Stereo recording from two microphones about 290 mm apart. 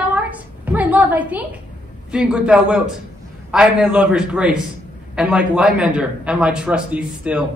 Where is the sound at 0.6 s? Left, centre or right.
Centre.